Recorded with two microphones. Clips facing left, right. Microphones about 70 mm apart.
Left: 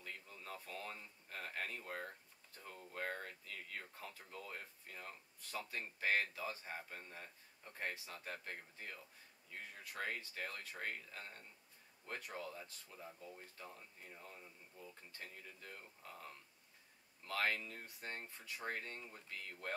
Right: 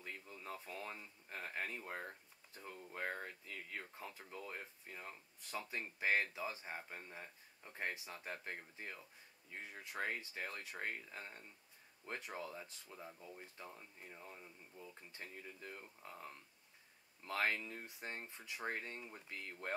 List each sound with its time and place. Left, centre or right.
0.0 s speech: centre